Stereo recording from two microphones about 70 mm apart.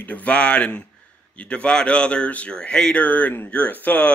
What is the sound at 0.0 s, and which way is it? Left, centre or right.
Speech, left.